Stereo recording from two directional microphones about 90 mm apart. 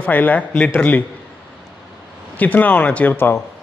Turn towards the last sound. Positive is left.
turn(degrees=25)  # may be behind; listen again after turning